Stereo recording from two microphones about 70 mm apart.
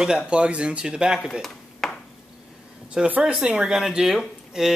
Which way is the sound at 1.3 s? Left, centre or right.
Centre.